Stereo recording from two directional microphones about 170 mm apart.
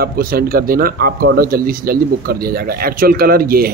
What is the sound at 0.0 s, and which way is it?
Speech, 60° right (ahead or behind).